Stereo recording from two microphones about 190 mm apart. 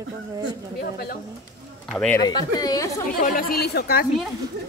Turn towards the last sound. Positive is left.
turn(degrees=55)  # may be behind; listen again after turning